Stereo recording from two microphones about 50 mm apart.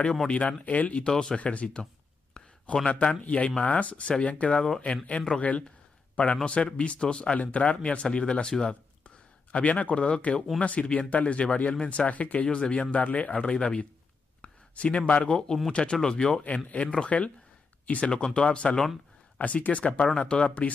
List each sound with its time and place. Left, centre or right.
0.3 s speech: left
1.0 s speech: centre
1.4 s speech: left
2.3 s a sound: left
2.9 s speech: left
9.0 s speech: left
11.7 s speech: centre
12.1 s speech: left
14.4 s a sound: left
15.3 s speech: centre
16.4 s speech: left